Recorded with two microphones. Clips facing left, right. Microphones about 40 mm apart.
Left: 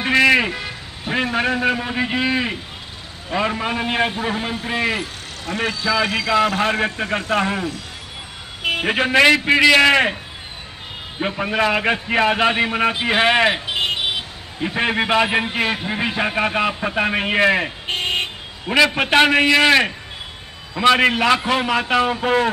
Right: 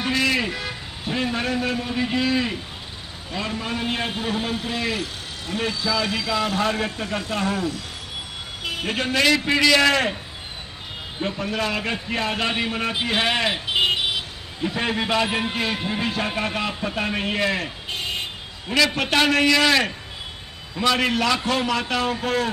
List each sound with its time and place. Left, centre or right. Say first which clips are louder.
0.0 s vehicle: left 7 dB; left
0.5 s vehicle: left 2 dB; centre
1.0 s a man's voice: left 5 dB; left
8.8 s a man's voice: left 6 dB; left
11.1 s a man's voice: left 5 dB; left
14.6 s a man's voice: left 4 dB; left
17.8 s vehicle: left 6 dB; left
18.9 s a man's voice: left 5 dB; left